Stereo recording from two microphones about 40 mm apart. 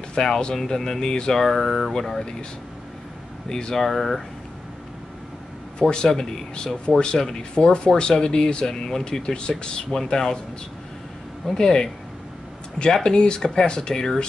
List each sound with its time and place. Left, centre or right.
0.1 s speech: centre
1.4 s speech: centre
2.0 s speech: centre
3.4 s speech: centre
3.8 s speech: centre
5.8 s speech: left
11.5 s speech: centre
13.0 s speech: left